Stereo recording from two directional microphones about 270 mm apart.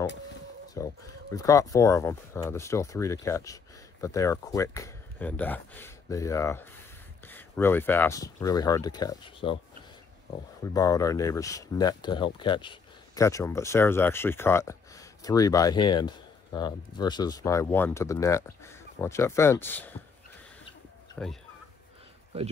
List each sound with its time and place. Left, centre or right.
0.7 s speech: centre
10.6 s speech: centre
21.2 s speech: centre